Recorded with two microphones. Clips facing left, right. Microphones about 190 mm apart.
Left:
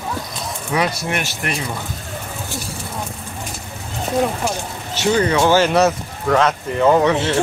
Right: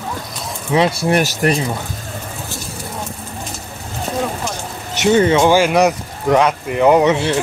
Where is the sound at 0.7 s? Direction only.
25° right (ahead or behind).